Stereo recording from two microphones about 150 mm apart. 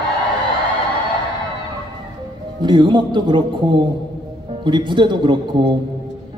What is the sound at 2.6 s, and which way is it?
A man's voice, 30° right (ahead or behind).